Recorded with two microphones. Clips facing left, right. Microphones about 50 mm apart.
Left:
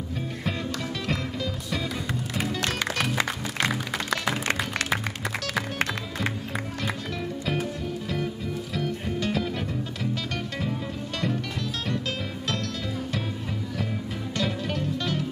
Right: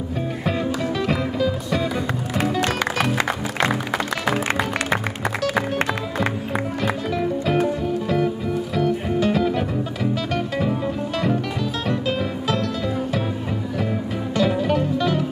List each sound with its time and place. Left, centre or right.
1.0 s music: centre
4.3 s music: centre
8.7 s music: centre
14.3 s music: centre